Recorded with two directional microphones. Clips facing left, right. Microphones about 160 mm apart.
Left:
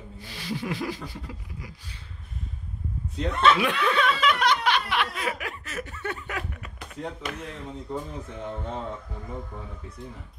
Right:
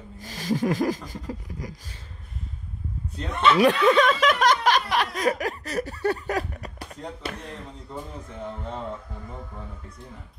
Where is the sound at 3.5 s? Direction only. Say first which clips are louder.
Right 7 dB; 40° right (ahead or behind).